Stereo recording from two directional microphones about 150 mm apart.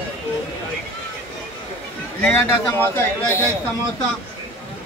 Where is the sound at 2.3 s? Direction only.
15° left (ahead or behind).